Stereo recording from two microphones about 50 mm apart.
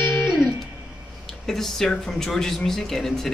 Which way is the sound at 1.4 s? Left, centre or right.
Centre.